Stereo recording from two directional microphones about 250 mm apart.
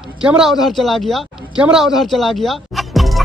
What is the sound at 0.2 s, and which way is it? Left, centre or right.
Speech, centre.